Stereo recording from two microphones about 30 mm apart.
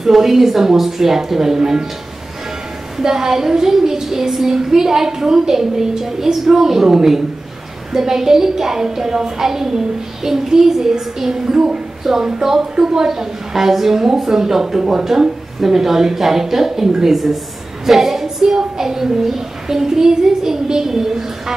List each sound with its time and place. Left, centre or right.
0.0 s a child's voice: centre
3.0 s a child's voice: centre